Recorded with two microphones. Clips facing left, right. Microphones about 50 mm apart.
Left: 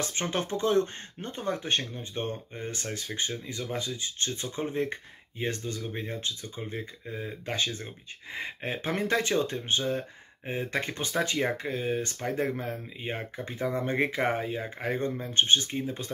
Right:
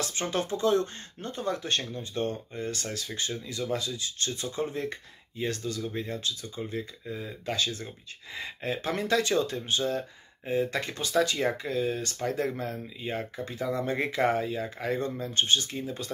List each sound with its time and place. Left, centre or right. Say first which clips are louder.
0.0 s speech: even; left